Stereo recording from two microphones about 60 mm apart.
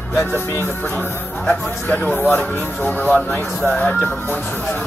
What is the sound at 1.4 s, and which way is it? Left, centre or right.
Speech, left.